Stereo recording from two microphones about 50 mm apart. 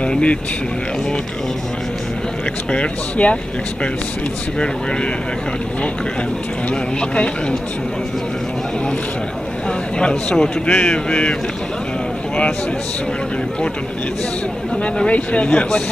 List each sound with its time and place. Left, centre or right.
0.0 s speech: left
2.7 s a man's voice: left
6.7 s a man's voice: centre
9.9 s a man's voice: centre
14.8 s a man's voice: left